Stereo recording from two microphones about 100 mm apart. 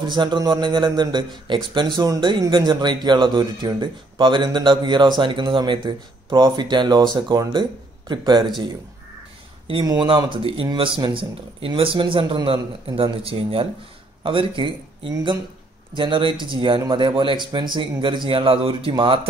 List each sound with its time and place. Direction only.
0.1 s speech: 50° right (ahead or behind)
9.8 s a man's voice: 45° right (ahead or behind)
15.9 s a man's voice: 55° right (ahead or behind)